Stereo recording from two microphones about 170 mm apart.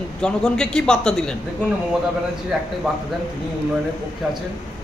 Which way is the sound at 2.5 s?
Centre (ahead or behind).